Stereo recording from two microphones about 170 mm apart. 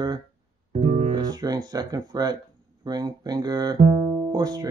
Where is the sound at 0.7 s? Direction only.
40° right (ahead or behind).